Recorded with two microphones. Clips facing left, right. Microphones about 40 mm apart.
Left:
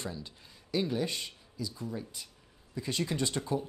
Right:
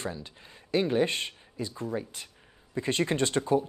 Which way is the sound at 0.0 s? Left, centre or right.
Right.